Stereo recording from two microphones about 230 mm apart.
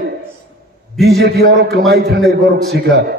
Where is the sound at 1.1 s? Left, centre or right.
Right.